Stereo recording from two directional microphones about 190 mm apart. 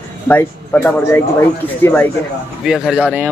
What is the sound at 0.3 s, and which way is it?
Speech, 10° left (ahead or behind).